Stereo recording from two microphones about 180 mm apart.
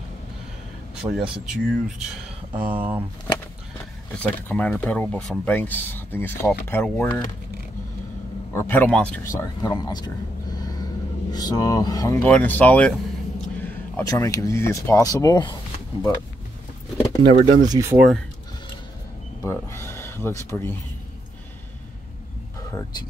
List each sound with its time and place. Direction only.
1.0 s speech: 20° right (ahead or behind)
1.4 s speech: 5° right (ahead or behind)
4.1 s speech: 5° left (ahead or behind)
8.5 s speech: 10° left (ahead or behind)
17.2 s speech: 35° right (ahead or behind)
17.6 s speech: 20° right (ahead or behind)
19.4 s speech: 15° left (ahead or behind)